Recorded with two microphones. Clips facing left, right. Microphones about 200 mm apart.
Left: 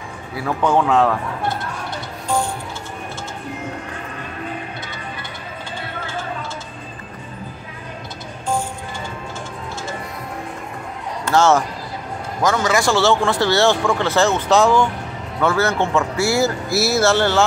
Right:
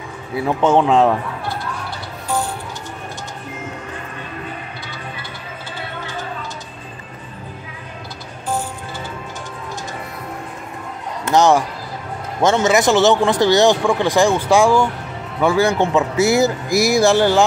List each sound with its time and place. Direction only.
0.4 s speech: 25° right (ahead or behind)
11.2 s speech: 15° right (ahead or behind)